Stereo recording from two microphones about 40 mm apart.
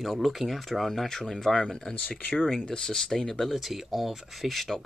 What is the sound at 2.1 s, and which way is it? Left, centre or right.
Speech, left.